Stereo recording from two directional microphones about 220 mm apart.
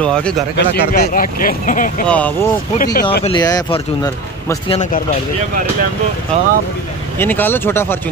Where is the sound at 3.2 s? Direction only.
20° left (ahead or behind).